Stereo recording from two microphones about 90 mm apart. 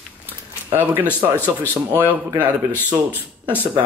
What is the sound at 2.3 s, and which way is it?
Speech, 20° right (ahead or behind).